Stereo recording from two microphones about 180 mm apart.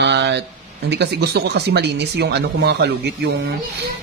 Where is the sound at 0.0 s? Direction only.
70° right (ahead or behind).